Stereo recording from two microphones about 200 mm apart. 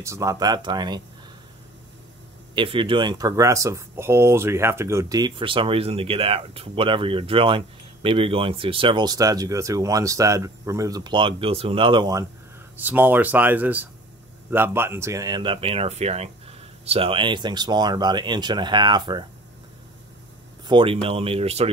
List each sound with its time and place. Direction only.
0.0 s speech: 15° right (ahead or behind)
2.5 s speech: 25° right (ahead or behind)
12.7 s speech: 10° right (ahead or behind)
20.6 s speech: 25° right (ahead or behind)